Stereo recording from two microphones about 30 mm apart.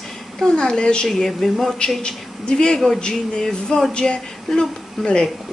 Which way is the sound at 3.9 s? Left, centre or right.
Left.